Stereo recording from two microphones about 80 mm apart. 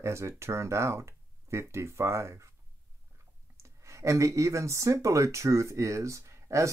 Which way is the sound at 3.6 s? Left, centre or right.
Right.